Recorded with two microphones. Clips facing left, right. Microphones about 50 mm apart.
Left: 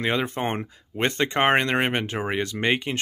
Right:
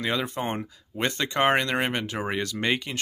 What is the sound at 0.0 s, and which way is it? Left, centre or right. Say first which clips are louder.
Speech: left 3 dB; left.